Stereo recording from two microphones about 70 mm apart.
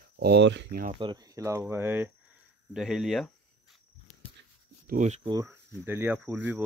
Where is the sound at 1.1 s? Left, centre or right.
Right.